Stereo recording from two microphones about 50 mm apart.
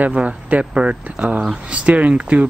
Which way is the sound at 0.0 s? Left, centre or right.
Right.